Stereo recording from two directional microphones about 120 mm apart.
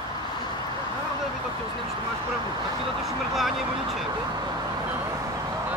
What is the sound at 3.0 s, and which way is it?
Speech, centre (ahead or behind).